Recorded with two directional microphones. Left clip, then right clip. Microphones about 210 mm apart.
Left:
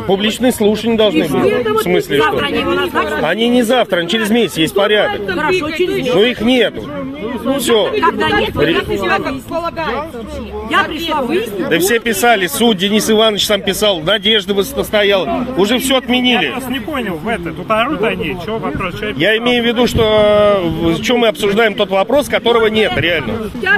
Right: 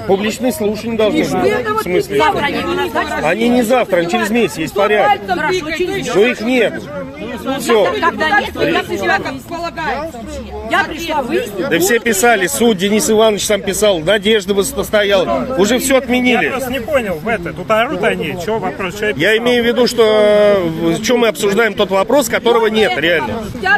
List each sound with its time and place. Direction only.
0.1 s speech: 35° left (ahead or behind)
3.3 s speech: 35° left (ahead or behind)
5.4 s speech: 10° left (ahead or behind)
6.1 s speech: 35° left (ahead or behind)
8.0 s speech: 5° left (ahead or behind)
11.7 s speech: 20° left (ahead or behind)
14.0 s speech: centre (ahead or behind)
16.9 s speech: 30° right (ahead or behind)
19.1 s speech: centre (ahead or behind)